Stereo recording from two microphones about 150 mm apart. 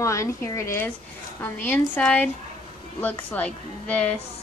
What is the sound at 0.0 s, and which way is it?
A woman's voice, 20° left (ahead or behind).